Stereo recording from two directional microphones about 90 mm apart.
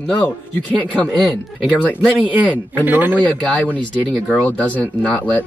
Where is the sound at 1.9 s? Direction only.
15° right (ahead or behind).